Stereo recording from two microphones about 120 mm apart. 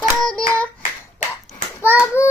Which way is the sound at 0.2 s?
10° left (ahead or behind).